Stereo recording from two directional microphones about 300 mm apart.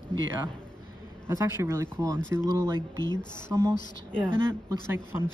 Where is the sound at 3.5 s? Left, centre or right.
Centre.